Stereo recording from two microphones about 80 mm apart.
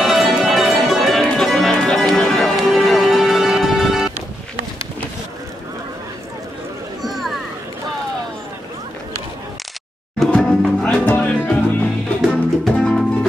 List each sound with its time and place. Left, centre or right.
0.0 s music: centre
7.0 s a sound: centre
10.3 s music: centre
11.1 s music: centre